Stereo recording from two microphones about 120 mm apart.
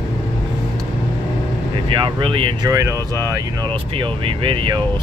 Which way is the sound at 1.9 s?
45° right (ahead or behind).